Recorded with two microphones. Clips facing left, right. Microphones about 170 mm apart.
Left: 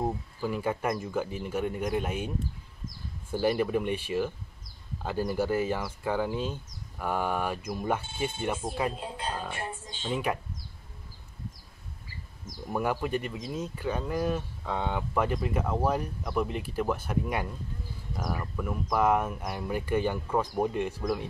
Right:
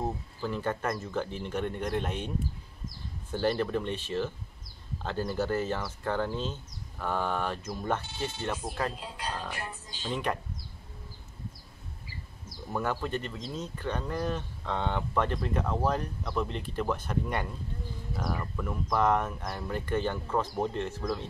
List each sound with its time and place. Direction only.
0.0 s speech: 10° left (ahead or behind)
9.0 s speech: 25° left (ahead or behind)
10.0 s speech: 5° left (ahead or behind)
12.6 s speech: 10° left (ahead or behind)